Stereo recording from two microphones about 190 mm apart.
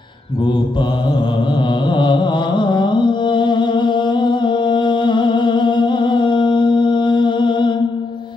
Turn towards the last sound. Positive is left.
turn(degrees=25)  # may be behind; listen again after turning